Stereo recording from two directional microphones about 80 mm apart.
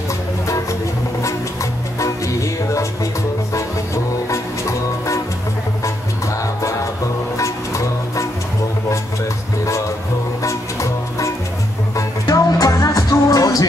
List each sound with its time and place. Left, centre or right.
2.0 s music: left
6.6 s music: left
10.4 s music: left